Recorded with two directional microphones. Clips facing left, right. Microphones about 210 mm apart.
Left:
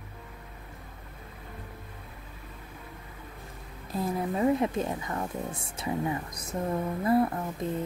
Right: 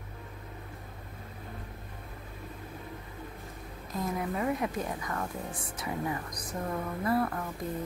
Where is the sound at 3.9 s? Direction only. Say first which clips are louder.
Left 3 dB; 30° left (ahead or behind).